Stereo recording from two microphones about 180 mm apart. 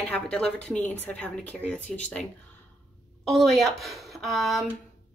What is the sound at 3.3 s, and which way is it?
Speech, centre (ahead or behind).